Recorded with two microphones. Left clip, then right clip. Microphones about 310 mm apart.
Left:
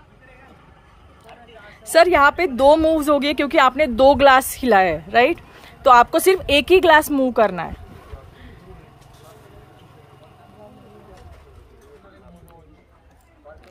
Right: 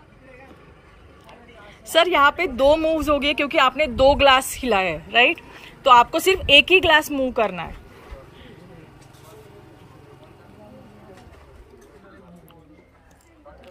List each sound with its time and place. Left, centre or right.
1.9 s a woman's voice: centre